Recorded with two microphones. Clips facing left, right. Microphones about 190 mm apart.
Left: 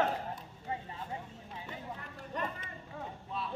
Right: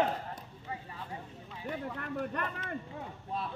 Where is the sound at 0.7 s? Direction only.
25° left (ahead or behind).